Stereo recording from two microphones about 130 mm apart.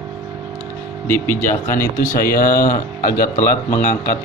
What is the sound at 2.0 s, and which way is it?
Speech, 90° left.